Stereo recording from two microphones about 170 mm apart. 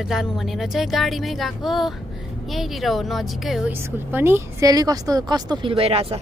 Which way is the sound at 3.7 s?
15° right (ahead or behind).